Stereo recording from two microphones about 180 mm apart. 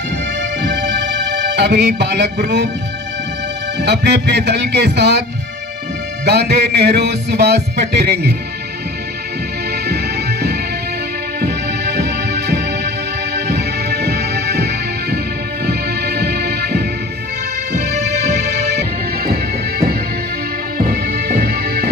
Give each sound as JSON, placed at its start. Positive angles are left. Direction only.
{"t": 0.4, "sound": "music", "side_deg": -75}
{"t": 3.8, "sound": "music", "side_deg": -70}
{"t": 6.2, "sound": "music", "side_deg": -65}
{"t": 11.4, "sound": "music", "side_deg": -65}
{"t": 18.3, "sound": "music", "side_deg": -65}
{"t": 20.7, "sound": "music", "side_deg": -55}